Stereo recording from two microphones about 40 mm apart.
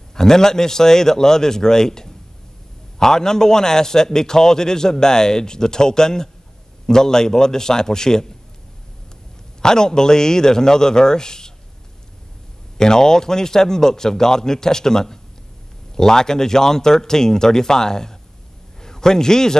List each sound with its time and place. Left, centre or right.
0.1 s a man's voice: centre
9.6 s a man's voice: centre
12.7 s a man's voice: centre